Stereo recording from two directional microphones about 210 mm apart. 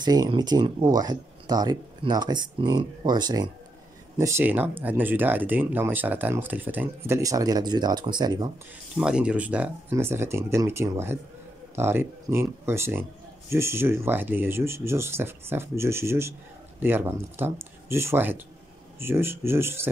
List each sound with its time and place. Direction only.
0.0 s speech: 20° right (ahead or behind)
9.0 s speech: 5° right (ahead or behind)